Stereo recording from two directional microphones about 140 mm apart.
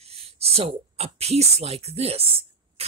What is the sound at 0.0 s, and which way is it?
A woman's voice, 45° right (ahead or behind).